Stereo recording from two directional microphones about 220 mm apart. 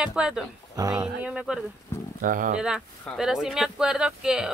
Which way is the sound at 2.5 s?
5° right (ahead or behind).